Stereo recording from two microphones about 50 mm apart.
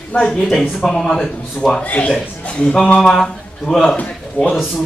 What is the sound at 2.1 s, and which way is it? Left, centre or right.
Speech, centre.